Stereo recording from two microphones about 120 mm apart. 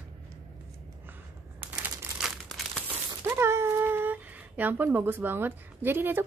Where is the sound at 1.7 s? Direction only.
15° right (ahead or behind).